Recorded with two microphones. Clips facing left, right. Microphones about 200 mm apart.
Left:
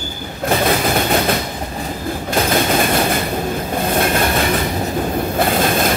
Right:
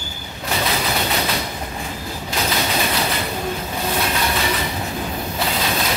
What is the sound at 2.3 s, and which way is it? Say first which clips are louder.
Train: left 6 dB; 50° left (ahead or behind).